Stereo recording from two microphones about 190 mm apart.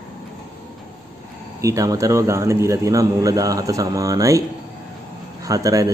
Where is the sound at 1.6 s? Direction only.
15° right (ahead or behind).